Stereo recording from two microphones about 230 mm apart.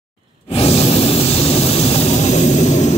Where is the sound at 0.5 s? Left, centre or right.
Left.